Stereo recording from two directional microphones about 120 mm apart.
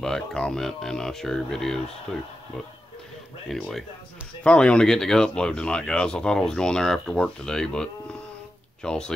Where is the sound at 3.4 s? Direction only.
5° left (ahead or behind).